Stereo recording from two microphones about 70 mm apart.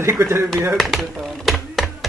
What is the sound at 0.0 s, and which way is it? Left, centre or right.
Speech, right.